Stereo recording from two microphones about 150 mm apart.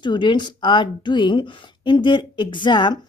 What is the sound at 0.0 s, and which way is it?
Speech, 30° left (ahead or behind).